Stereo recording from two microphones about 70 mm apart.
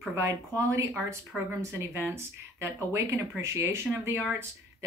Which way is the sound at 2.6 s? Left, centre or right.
Right.